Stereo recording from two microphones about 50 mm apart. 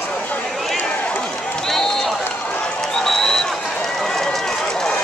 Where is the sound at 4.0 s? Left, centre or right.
Centre.